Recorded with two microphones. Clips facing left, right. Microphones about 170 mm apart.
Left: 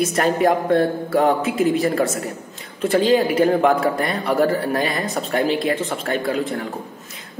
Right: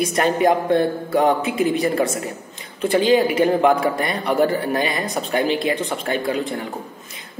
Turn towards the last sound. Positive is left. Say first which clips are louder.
# even
turn(degrees=0)  # may be behind; listen again after turning